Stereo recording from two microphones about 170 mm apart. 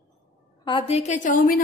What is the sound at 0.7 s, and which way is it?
Speech, 30° left (ahead or behind).